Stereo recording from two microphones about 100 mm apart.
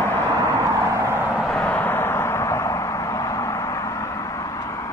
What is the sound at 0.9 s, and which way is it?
Vehicle, 25° right (ahead or behind).